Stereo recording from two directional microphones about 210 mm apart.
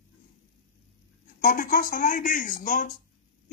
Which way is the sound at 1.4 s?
40° left (ahead or behind).